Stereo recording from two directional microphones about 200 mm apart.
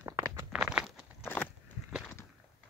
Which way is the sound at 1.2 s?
10° left (ahead or behind).